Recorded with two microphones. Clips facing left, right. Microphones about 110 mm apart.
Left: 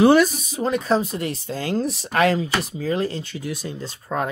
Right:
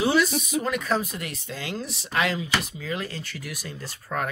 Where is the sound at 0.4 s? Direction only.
30° left (ahead or behind).